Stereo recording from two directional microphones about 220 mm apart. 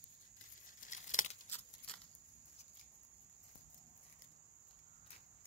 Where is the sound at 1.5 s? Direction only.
10° left (ahead or behind).